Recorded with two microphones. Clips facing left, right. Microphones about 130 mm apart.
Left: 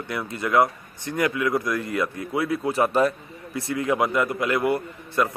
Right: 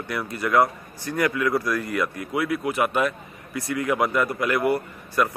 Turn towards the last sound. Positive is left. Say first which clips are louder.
# even
turn(degrees=25)  # may be behind; listen again after turning